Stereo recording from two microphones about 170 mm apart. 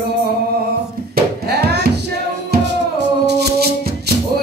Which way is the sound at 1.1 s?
70° right (ahead or behind).